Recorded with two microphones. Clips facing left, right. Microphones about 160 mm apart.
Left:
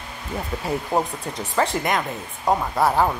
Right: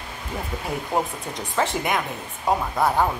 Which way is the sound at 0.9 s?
20° left (ahead or behind).